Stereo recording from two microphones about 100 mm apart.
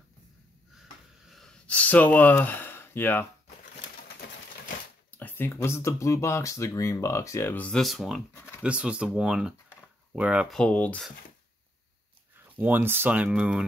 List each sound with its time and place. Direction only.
1.3 s a sound: 5° left (ahead or behind); by 3.3 s 20° left (ahead or behind)
5.1 s speech: 20° left (ahead or behind)
7.5 s speech: 10° left (ahead or behind)
7.8 s speech: centre (ahead or behind)
8.3 s a sound: 20° left (ahead or behind)
8.6 s speech: 10° right (ahead or behind)
10.5 s speech: 10° left (ahead or behind)
12.5 s speech: 20° right (ahead or behind)